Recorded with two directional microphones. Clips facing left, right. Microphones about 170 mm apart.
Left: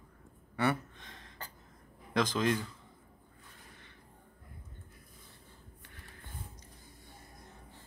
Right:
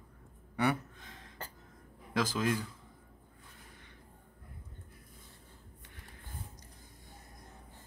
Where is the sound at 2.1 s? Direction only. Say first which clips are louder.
Left 2 dB; 5° right (ahead or behind).